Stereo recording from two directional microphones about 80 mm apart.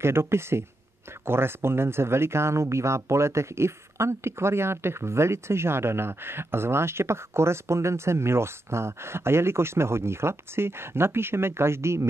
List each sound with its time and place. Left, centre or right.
0.0 s speech: right